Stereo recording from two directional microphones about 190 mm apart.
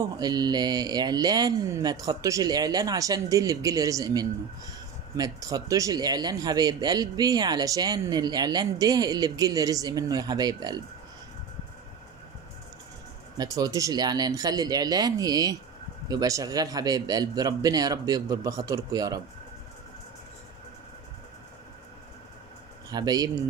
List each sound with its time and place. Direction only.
0.0 s speech: 20° right (ahead or behind)
13.4 s speech: 20° right (ahead or behind)
22.8 s speech: 20° right (ahead or behind)